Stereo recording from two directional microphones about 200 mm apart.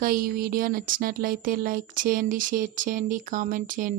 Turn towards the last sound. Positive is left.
turn(degrees=-40)  # may be behind; listen again after turning